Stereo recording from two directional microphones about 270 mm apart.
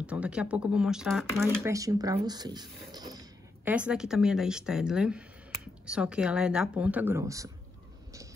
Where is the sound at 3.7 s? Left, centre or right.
Centre.